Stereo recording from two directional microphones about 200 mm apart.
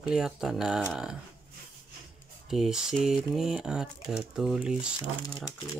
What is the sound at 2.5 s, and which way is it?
Speech, centre (ahead or behind).